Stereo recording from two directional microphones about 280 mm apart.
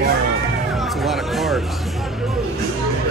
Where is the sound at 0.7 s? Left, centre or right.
Centre.